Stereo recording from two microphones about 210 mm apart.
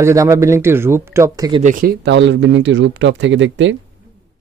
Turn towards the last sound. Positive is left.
turn(degrees=-60)  # may be behind; listen again after turning